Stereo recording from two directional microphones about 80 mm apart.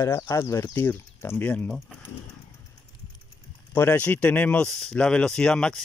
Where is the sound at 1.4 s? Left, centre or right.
Centre.